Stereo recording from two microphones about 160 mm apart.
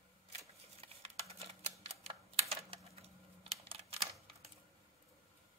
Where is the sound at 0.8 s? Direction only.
40° right (ahead or behind).